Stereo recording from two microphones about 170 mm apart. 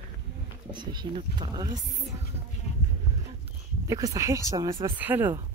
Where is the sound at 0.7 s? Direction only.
25° right (ahead or behind).